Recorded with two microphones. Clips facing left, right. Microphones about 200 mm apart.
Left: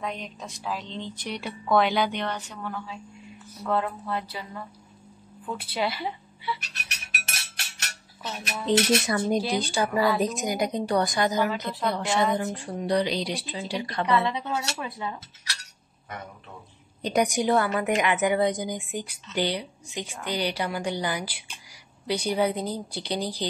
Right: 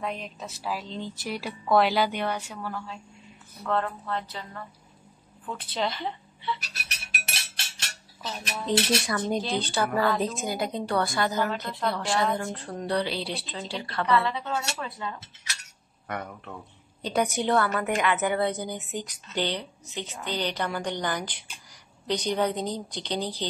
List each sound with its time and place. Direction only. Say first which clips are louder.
0.0 s a woman's voice: even; centre (ahead or behind)
6.6 s music: even; 35° right (ahead or behind)
8.2 s a woman's voice: left 1 dB; 5° left (ahead or behind)
9.2 s speech: left 3 dB; 10° left (ahead or behind)
11.5 s a woman's voice: left 1 dB; centre (ahead or behind)
17.0 s speech: left 2 dB; 15° left (ahead or behind)